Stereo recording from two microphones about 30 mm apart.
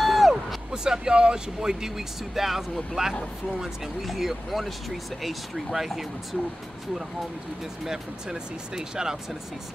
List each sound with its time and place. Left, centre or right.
0.0 s a sound: centre
0.7 s speech: right
7.8 s speech: right